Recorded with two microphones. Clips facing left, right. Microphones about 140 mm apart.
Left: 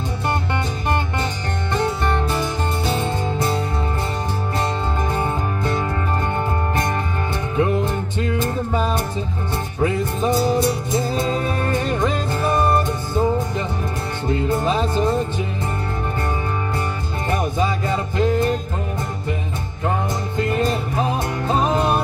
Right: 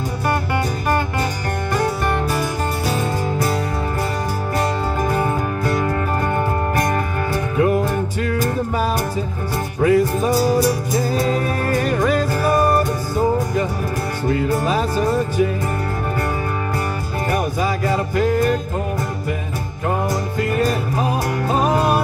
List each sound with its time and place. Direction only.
1.7 s music: 25° left (ahead or behind)
4.6 s music: 25° left (ahead or behind)
7.5 s music: 25° left (ahead or behind)
17.3 s music: 25° left (ahead or behind)
20.3 s music: 25° left (ahead or behind)